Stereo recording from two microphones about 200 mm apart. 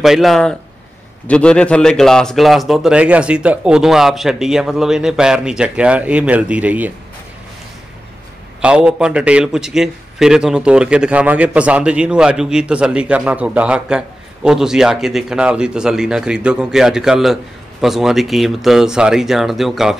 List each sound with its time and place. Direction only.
0.0 s a man's voice: centre (ahead or behind)
8.5 s a man's voice: 5° right (ahead or behind)